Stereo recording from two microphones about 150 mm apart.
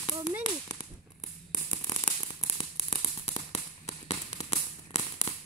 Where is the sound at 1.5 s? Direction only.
25° left (ahead or behind).